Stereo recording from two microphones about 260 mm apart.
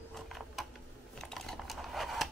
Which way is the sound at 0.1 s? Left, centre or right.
Centre.